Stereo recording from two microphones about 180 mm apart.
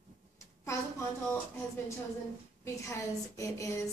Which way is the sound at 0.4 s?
15° left (ahead or behind).